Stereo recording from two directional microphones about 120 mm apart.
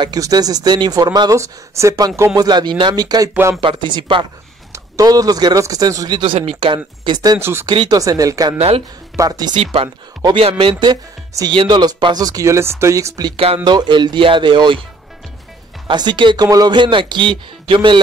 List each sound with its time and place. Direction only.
0.0 s speech: 30° right (ahead or behind)
4.7 s speech: 30° right (ahead or behind); by 6.8 s 50° right (ahead or behind)
7.1 s speech: 35° right (ahead or behind)
7.3 s speech: 20° right (ahead or behind)
8.5 s speech: 55° right (ahead or behind)
9.1 s speech: 30° right (ahead or behind)
9.6 s speech: 55° right (ahead or behind); by 13.3 s 30° right (ahead or behind)
13.7 s speech: 40° right (ahead or behind)
15.9 s speech: 40° right (ahead or behind)